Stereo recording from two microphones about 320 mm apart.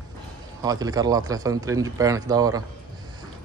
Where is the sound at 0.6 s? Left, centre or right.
Centre.